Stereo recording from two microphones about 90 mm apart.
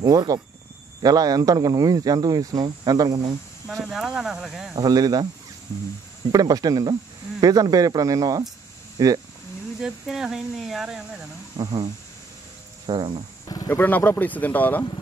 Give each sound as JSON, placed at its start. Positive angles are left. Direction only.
{"t": 0.0, "sound": "speech", "side_deg": -45}
{"t": 3.8, "sound": "speech", "side_deg": -5}
{"t": 4.7, "sound": "speech", "side_deg": -45}
{"t": 6.3, "sound": "speech", "side_deg": -45}
{"t": 9.8, "sound": "speech", "side_deg": -5}
{"t": 11.5, "sound": "speech", "side_deg": -50}
{"t": 12.8, "sound": "cricket", "side_deg": -60}
{"t": 13.7, "sound": "speech", "side_deg": 25}